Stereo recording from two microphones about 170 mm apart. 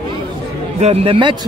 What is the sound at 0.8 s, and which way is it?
Speech, 35° right (ahead or behind).